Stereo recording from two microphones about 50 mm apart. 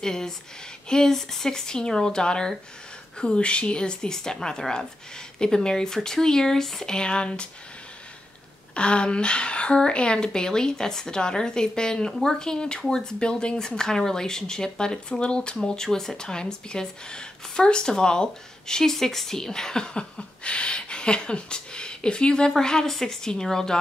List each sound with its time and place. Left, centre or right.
0.0 s speech: centre
8.7 s speech: left